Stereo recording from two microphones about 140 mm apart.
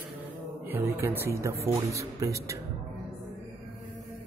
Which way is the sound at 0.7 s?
15° right (ahead or behind).